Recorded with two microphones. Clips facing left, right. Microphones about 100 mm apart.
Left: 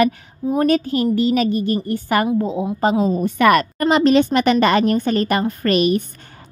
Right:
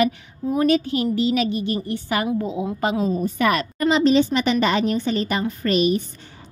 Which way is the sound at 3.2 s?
65° left (ahead or behind).